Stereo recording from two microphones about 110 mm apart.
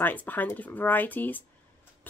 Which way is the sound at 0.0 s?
15° left (ahead or behind).